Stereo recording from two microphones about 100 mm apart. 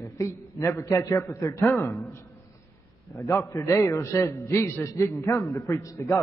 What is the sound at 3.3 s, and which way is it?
A man's voice, 30° left (ahead or behind).